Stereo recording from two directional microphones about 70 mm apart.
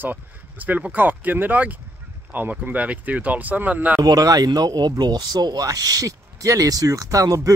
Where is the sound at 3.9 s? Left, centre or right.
Right.